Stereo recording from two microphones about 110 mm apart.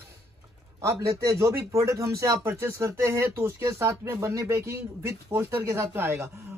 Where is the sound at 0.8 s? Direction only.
25° right (ahead or behind).